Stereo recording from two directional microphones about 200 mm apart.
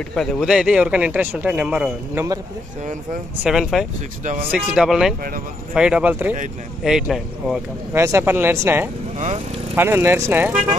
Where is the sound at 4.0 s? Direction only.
35° right (ahead or behind).